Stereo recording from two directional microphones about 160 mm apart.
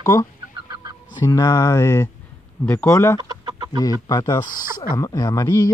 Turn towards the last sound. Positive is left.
turn(degrees=20)  # may be behind; listen again after turning